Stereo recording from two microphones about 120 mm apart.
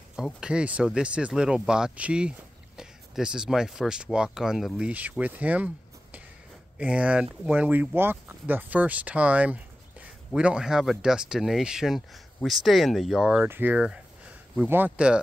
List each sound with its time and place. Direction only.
0.1 s speech: 5° right (ahead or behind)
6.8 s speech: 10° right (ahead or behind)
13.7 s speech: 5° right (ahead or behind)